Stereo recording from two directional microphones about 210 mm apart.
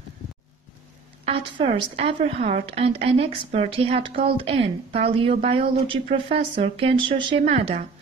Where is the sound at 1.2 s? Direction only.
30° right (ahead or behind).